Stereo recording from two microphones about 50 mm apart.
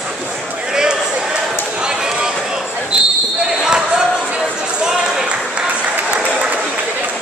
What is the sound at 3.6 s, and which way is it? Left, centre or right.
Basketball bounce, centre.